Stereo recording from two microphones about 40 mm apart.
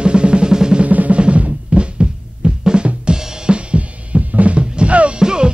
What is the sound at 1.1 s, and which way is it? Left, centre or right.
Drum, right.